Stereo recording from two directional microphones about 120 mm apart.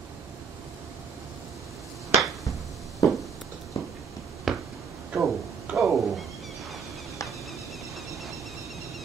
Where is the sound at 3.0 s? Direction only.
30° left (ahead or behind).